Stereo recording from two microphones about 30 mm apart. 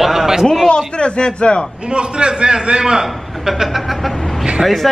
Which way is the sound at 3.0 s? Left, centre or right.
Centre.